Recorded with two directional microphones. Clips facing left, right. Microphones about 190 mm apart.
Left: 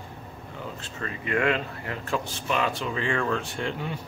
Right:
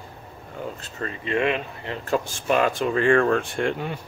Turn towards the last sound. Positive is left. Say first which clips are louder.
# right 6 dB
turn(degrees=-55)  # may be behind; listen again after turning